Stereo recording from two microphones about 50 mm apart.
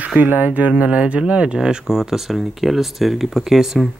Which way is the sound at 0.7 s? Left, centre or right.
Right.